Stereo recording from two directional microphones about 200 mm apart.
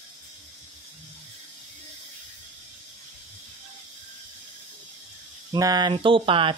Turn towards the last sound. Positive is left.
turn(degrees=-25)  # may be behind; listen again after turning